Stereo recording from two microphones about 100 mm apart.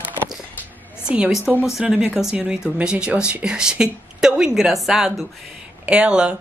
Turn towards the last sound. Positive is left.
turn(degrees=-10)  # may be behind; listen again after turning